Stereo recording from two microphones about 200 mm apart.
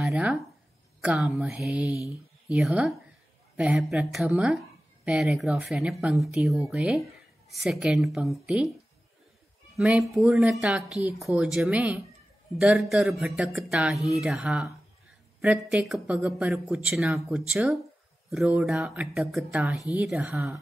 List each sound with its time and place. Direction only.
0.0 s a woman's voice: 5° right (ahead or behind)
9.8 s a woman's voice: 5° right (ahead or behind)